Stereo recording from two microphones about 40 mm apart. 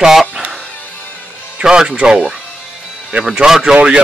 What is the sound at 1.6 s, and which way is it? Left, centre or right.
Speech, right.